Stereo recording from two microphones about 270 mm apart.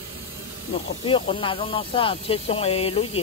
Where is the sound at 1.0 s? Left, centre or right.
Centre.